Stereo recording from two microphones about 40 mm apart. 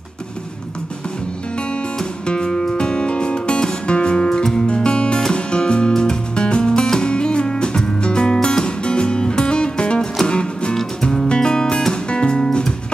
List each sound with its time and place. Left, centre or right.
2.2 s music: left